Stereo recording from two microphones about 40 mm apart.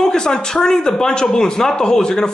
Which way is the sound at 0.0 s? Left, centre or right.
Centre.